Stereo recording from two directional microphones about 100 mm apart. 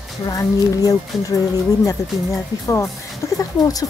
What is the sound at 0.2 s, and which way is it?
A woman's voice, 35° left (ahead or behind).